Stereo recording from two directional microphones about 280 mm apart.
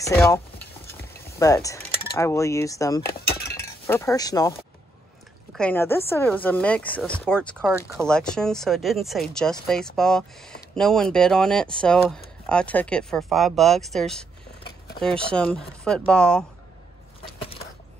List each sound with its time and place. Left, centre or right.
0.0 s stir: centre
1.4 s speech: centre